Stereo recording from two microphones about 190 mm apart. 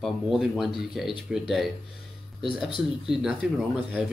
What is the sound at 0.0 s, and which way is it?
Speech, centre (ahead or behind).